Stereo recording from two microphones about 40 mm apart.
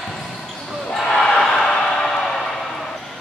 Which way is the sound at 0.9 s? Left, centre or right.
Centre.